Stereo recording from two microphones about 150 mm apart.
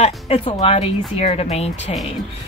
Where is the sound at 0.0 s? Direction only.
45° left (ahead or behind).